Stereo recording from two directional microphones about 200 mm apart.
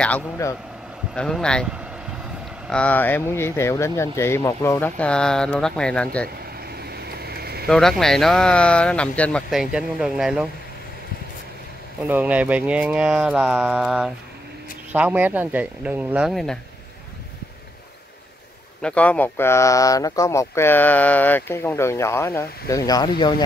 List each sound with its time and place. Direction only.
0.0 s speech: 10° left (ahead or behind)
6.8 s vehicle: 50° right (ahead or behind)
7.6 s speech: centre (ahead or behind)
12.1 s speech: 10° right (ahead or behind)
18.8 s speech: 5° left (ahead or behind); by 23.3 s 20° left (ahead or behind)